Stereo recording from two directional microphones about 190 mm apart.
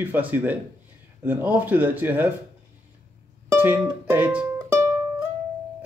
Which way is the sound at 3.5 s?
10° right (ahead or behind).